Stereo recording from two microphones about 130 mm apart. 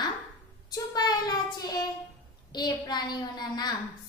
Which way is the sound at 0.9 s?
30° left (ahead or behind).